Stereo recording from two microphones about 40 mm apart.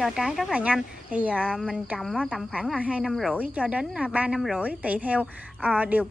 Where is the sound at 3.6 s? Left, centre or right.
Right.